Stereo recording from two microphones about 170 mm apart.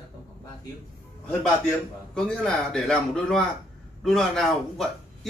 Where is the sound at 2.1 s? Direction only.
5° left (ahead or behind).